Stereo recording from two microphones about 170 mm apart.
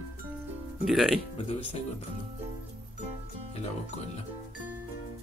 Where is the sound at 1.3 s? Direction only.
40° left (ahead or behind).